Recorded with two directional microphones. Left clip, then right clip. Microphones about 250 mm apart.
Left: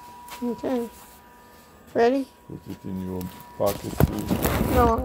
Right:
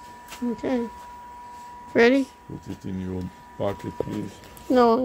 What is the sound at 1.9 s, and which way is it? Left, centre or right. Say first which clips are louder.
Speech: right 2 dB; right.